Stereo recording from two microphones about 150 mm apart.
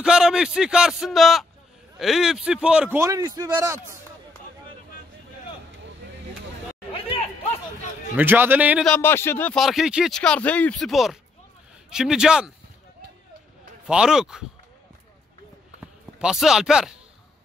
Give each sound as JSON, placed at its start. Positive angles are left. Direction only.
{"t": 0.0, "sound": "speech", "side_deg": -5}
{"t": 3.0, "sound": "a man's voice", "side_deg": -20}
{"t": 8.2, "sound": "a man's voice", "side_deg": -10}
{"t": 8.8, "sound": "speech", "side_deg": 10}
{"t": 9.6, "sound": "speech", "side_deg": 0}
{"t": 13.8, "sound": "speech", "side_deg": -5}
{"t": 16.2, "sound": "speech", "side_deg": -5}